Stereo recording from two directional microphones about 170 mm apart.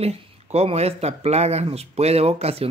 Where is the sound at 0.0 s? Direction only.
35° right (ahead or behind).